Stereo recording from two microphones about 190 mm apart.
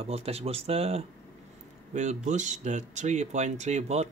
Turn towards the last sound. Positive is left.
turn(degrees=-35)  # may be behind; listen again after turning